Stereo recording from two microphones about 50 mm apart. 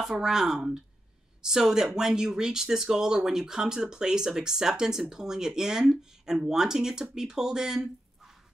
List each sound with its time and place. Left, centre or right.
0.0 s speech: centre